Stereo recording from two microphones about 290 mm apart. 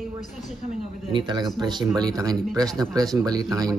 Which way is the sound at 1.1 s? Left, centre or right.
Centre.